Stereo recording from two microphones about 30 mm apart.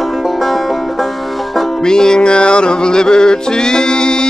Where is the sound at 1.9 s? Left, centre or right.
Left.